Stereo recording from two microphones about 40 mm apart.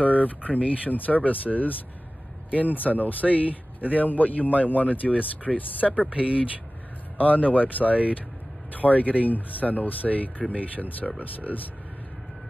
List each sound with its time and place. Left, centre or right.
0.0 s speech: left
5.5 s speech: centre
5.8 s speech: left
6.0 s speech: right
7.2 s speech: left